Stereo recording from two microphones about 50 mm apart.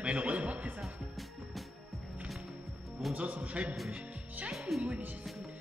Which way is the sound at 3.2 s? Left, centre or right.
Right.